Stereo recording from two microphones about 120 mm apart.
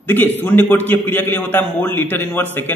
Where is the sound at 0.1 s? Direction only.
15° left (ahead or behind).